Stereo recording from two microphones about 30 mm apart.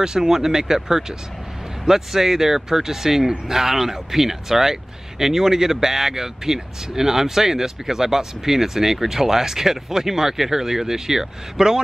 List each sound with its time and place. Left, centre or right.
0.0 s speech: right